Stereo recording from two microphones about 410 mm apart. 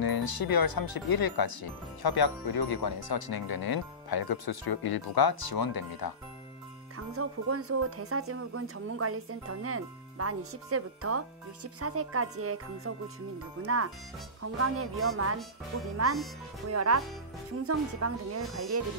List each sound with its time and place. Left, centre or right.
0.0 s speech: left
7.2 s speech: right
16.6 s speech: right